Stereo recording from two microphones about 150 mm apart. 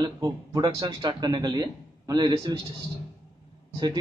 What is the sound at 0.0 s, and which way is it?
A man's voice, 25° right (ahead or behind).